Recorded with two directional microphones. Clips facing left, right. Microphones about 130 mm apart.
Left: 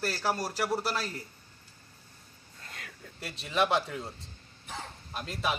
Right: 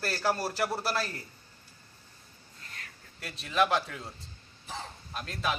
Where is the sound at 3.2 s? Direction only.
Centre (ahead or behind).